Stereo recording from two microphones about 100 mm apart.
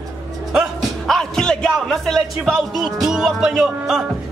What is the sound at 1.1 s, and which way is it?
Speech, 5° left (ahead or behind).